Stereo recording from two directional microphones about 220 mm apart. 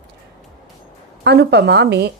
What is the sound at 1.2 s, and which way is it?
Speech, 50° right (ahead or behind).